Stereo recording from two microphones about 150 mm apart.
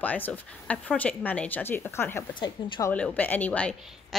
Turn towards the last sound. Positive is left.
turn(degrees=10)  # may be behind; listen again after turning